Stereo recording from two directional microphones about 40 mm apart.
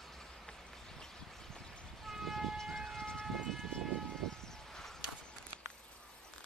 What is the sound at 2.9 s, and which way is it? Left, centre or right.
Siren, centre.